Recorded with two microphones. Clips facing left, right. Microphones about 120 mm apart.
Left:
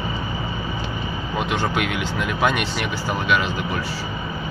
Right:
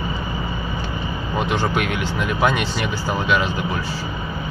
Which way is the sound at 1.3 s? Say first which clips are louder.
Right 2 dB; 5° left (ahead or behind).